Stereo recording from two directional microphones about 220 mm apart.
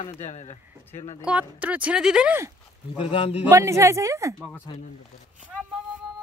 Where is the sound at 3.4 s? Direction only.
15° right (ahead or behind).